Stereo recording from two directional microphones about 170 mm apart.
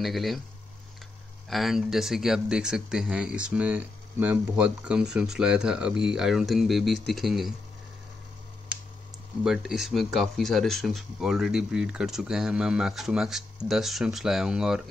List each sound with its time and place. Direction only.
0.0 s speech: centre (ahead or behind)
1.5 s speech: centre (ahead or behind)
9.4 s speech: 5° right (ahead or behind)